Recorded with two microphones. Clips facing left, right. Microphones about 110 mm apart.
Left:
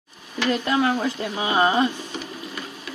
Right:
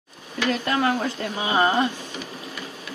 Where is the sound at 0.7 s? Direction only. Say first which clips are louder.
Left 1 dB; 10° left (ahead or behind).